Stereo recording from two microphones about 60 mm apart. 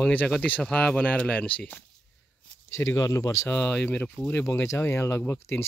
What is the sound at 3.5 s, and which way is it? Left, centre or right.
Speech, left.